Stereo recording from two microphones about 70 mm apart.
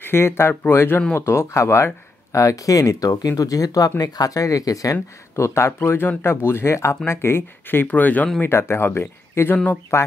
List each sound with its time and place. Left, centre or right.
0.0 s speech: left
5.3 s speech: left
5.7 s speech: left
7.8 s speech: left
8.4 s speech: left